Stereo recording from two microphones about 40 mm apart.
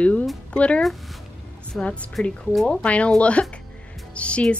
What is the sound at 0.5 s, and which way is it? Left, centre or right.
Speech, left.